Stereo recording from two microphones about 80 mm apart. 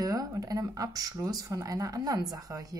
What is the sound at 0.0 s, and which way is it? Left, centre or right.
A woman's voice, right.